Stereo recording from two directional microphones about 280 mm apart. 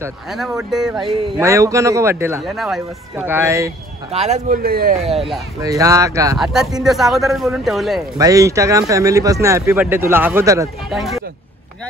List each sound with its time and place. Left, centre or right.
0.0 s speech: centre
4.1 s speech: right
5.1 s speech: centre
5.6 s speech: centre
8.2 s speech: centre
10.9 s speech: centre